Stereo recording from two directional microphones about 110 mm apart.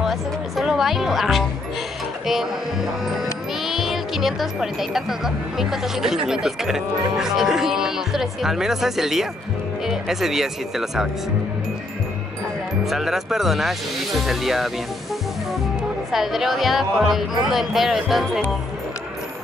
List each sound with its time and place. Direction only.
0.0 s music: 5° right (ahead or behind)
2.2 s speech: 5° right (ahead or behind)
12.8 s speech: 5° right (ahead or behind)
16.1 s speech: centre (ahead or behind)